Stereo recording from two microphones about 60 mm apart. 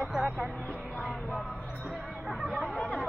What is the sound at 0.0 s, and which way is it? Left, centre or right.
Music, centre.